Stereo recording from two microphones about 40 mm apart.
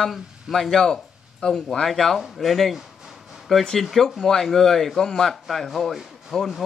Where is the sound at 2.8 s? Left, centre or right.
Centre.